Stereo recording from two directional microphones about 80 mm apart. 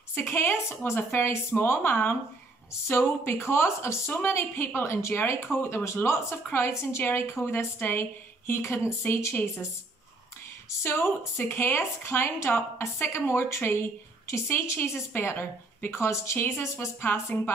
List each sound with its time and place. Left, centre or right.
0.1 s a woman's voice: left
10.8 s a woman's voice: left